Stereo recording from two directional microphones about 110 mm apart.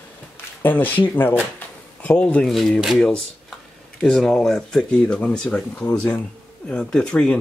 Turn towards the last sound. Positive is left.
turn(degrees=10)  # may be behind; listen again after turning